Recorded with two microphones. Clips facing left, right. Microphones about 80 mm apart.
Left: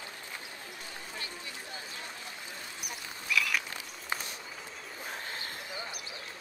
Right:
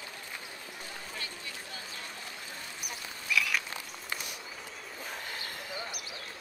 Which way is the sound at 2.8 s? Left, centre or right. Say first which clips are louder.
Even; centre.